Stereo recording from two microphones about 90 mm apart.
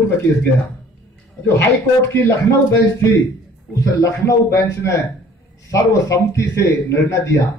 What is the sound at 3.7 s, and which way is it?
A man's voice, 40° left (ahead or behind).